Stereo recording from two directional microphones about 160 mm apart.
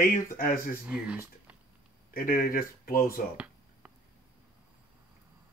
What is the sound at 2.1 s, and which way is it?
Speech, 65° left (ahead or behind).